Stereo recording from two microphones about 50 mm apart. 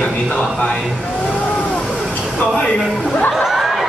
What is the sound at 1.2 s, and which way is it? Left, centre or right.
Vehicle, left.